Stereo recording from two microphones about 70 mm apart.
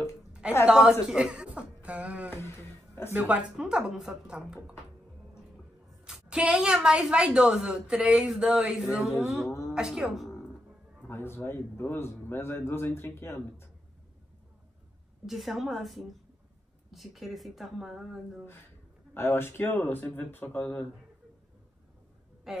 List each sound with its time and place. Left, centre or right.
0.3 s a sound: centre
0.7 s a woman's voice: centre
2.3 s a sound: left
3.2 s a woman's voice: centre
6.0 s a woman's voice: centre
11.1 s speech: left
15.2 s speech: centre
19.1 s speech: left
22.5 s speech: centre